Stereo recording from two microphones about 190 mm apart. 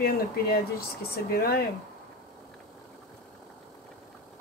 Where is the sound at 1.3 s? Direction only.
55° left (ahead or behind).